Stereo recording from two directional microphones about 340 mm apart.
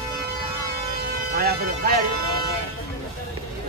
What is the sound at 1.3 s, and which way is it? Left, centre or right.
Speech, right.